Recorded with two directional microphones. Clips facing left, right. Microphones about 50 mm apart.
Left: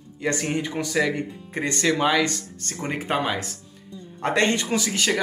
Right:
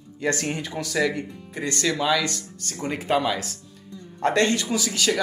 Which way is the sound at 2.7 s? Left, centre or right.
Left.